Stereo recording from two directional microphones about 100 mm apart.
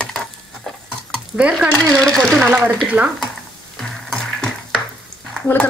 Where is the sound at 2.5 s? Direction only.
20° right (ahead or behind).